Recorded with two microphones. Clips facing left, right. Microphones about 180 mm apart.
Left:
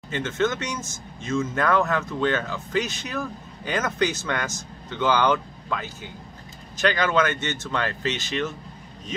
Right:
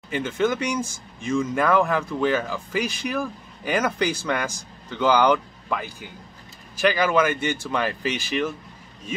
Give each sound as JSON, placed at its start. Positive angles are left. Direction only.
{"t": 0.1, "sound": "speech", "side_deg": -10}